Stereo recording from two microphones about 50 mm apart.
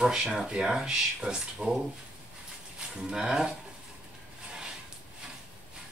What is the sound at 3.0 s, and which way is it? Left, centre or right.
Speech, centre.